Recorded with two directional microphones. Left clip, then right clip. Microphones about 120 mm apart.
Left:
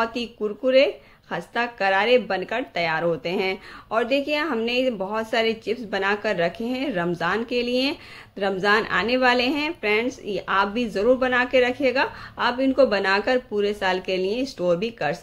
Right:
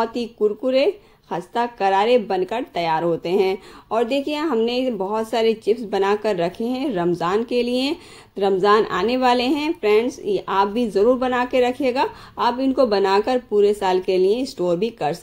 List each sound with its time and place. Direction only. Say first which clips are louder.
0.0 s speech: right 5 dB; 40° right (ahead or behind)